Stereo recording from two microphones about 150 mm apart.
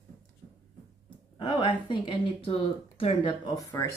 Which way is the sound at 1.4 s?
30° left (ahead or behind).